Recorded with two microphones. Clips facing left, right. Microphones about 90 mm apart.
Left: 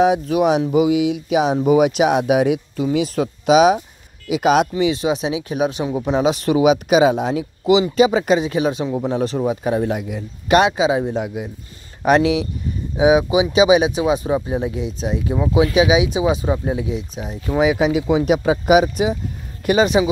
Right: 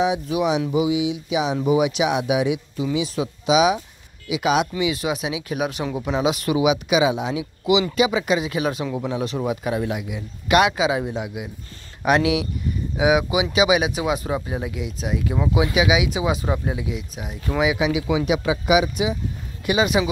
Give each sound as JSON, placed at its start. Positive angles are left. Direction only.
{"t": 0.0, "sound": "speech", "side_deg": 50}
{"t": 4.7, "sound": "speech", "side_deg": 30}
{"t": 11.1, "sound": "speech", "side_deg": 40}